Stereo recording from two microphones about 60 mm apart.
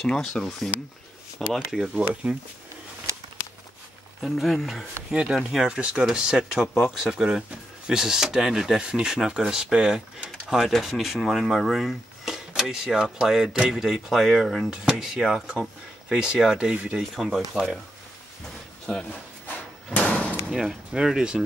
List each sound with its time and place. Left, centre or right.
0.0 s speech: centre
1.5 s speech: centre
2.2 s speech: right
4.2 s speech: centre
14.7 s speech: centre
17.2 s speech: centre
18.9 s speech: centre
20.0 s door: centre
20.5 s speech: centre